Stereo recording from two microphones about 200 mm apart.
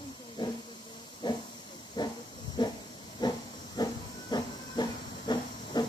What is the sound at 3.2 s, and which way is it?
Hiss, 20° left (ahead or behind).